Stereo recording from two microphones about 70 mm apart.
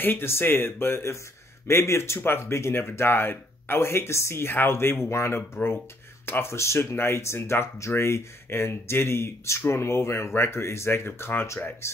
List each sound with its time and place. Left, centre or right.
0.0 s speech: left